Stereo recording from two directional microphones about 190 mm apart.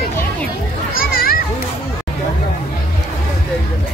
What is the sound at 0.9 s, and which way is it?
Children playing, 50° left (ahead or behind).